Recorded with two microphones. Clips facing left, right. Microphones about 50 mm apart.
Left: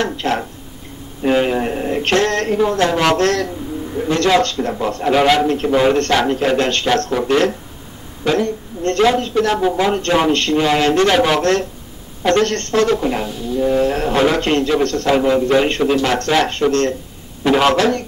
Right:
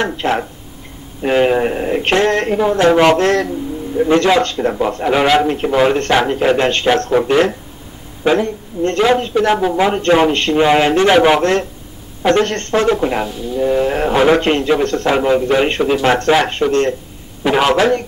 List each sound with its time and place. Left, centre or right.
0.0 s a man's voice: centre